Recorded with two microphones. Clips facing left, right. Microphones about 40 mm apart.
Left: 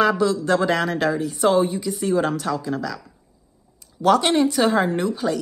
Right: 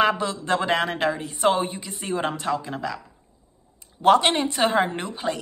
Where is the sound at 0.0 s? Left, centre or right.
Right.